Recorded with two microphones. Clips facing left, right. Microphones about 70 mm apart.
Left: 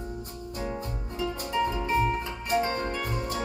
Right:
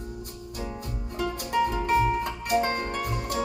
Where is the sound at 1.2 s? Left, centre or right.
Right.